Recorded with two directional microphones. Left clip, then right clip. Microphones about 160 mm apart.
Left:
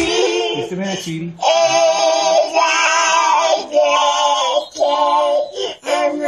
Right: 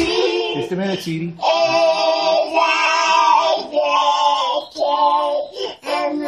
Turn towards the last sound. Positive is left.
turn(degrees=25)  # may be behind; listen again after turning